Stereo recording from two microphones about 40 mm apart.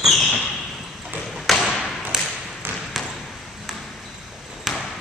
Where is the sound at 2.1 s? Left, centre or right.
Centre.